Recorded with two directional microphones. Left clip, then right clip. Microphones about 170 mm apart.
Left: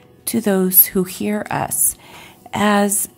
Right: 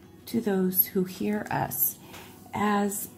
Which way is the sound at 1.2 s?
30° left (ahead or behind).